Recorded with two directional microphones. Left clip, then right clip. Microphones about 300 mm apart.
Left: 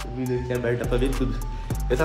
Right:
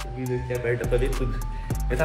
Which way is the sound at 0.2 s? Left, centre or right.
Centre.